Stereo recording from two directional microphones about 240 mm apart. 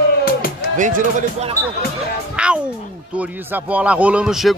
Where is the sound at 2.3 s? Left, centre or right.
Centre.